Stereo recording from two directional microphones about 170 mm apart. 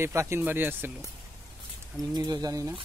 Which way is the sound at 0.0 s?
15° right (ahead or behind).